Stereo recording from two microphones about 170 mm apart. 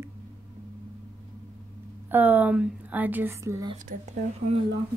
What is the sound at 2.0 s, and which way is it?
A woman's voice, 10° right (ahead or behind).